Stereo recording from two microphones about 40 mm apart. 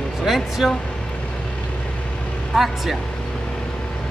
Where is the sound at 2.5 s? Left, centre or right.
Centre.